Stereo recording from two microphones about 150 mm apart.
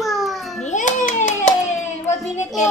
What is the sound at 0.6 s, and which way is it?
Hands, 55° left (ahead or behind).